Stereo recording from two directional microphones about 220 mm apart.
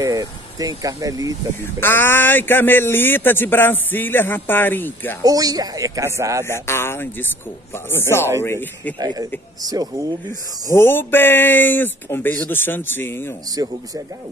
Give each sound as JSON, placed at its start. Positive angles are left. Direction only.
{"t": 0.0, "sound": "speech", "side_deg": -15}
{"t": 1.5, "sound": "speech", "side_deg": 10}
{"t": 5.2, "sound": "speech", "side_deg": -15}
{"t": 6.4, "sound": "speech", "side_deg": 10}
{"t": 8.4, "sound": "speech", "side_deg": 10}
{"t": 9.0, "sound": "speech", "side_deg": -15}
{"t": 10.7, "sound": "speech", "side_deg": 10}
{"t": 13.5, "sound": "speech", "side_deg": -15}